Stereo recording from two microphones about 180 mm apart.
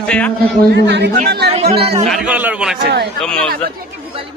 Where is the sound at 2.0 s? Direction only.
5° right (ahead or behind).